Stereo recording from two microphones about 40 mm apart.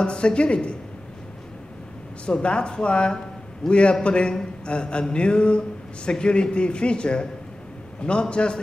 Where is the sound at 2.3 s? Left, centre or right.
Left.